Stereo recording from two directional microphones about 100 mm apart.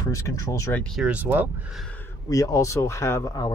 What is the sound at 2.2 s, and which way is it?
Speech, 35° left (ahead or behind).